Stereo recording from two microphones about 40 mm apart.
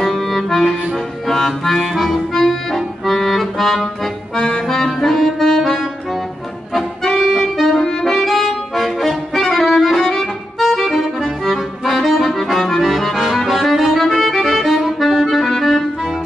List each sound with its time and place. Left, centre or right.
0.0 s music: centre
2.1 s accordion: centre
6.7 s music: centre
14.9 s accordion: centre